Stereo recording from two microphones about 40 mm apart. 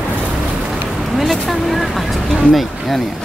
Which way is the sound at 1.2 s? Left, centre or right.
Centre.